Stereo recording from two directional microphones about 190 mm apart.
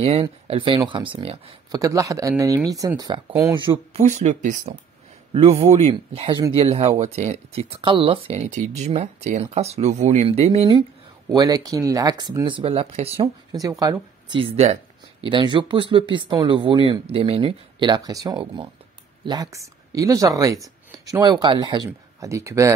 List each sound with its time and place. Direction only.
0.0 s speech: 30° right (ahead or behind)
1.7 s speech: 15° right (ahead or behind)
3.9 s speech: 35° right (ahead or behind)
11.2 s speech: 20° right (ahead or behind)
13.2 s speech: 20° right (ahead or behind)